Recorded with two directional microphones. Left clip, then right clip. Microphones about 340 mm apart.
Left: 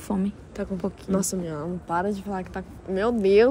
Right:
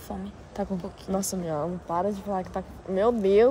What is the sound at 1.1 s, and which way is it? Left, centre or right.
A woman's voice, centre.